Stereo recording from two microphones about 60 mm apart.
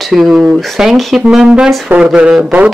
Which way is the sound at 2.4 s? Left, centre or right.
Right.